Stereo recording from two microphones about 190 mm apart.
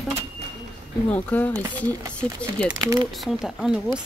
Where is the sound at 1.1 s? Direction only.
10° left (ahead or behind).